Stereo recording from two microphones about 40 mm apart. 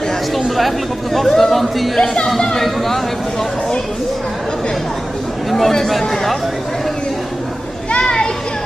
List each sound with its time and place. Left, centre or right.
0.6 s speech: centre
5.5 s speech: centre
8.0 s children playing: centre